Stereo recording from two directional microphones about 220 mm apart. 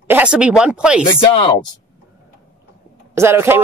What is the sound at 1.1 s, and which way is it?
Speech, 20° left (ahead or behind).